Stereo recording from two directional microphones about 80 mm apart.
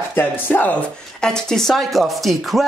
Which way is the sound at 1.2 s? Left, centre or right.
Centre.